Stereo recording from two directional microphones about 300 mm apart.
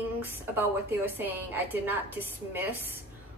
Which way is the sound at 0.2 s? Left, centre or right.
Centre.